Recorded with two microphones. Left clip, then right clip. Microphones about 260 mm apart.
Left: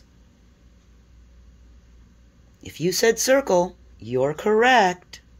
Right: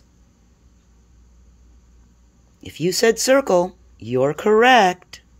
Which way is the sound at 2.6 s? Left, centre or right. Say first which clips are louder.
Right 3 dB; right.